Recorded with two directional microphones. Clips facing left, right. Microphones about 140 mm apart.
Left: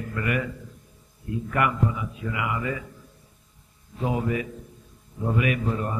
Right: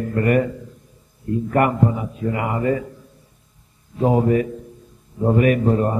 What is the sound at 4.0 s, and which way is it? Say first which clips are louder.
A man's voice: right 9 dB; 45° right (ahead or behind).